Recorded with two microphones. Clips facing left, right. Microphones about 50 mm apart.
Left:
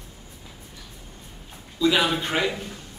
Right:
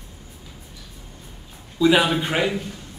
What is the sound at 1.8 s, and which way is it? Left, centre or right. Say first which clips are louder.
Speech: right 4 dB; centre.